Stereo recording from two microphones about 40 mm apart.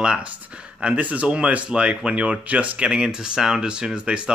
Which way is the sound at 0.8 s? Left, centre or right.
Right.